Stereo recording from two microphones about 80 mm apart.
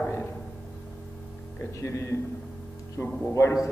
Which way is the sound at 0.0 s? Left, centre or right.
Left.